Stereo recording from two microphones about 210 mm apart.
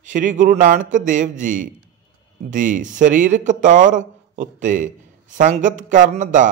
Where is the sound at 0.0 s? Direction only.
40° right (ahead or behind).